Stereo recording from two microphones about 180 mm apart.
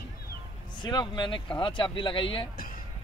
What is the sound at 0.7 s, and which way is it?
A man's voice, 25° left (ahead or behind).